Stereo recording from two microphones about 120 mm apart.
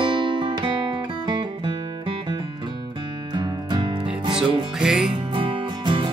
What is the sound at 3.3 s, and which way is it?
Music, 40° right (ahead or behind).